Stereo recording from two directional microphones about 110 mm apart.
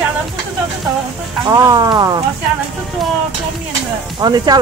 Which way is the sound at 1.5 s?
35° right (ahead or behind).